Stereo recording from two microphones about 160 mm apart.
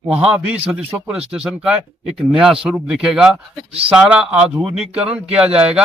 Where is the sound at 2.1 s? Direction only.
5° right (ahead or behind).